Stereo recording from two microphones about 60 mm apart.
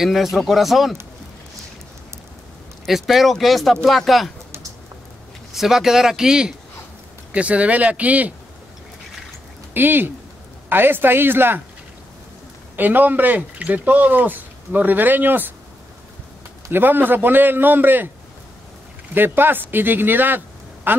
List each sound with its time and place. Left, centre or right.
0.0 s speech: centre
2.9 s speech: centre
5.5 s speech: centre; by 8.4 s right
9.8 s speech: right
12.7 s speech: right
16.7 s speech: right
19.1 s speech: right